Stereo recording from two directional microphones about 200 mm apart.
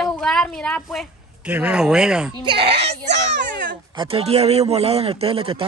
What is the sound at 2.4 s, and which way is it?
Speech, 30° right (ahead or behind).